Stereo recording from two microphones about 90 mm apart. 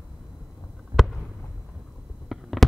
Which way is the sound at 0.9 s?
55° right (ahead or behind).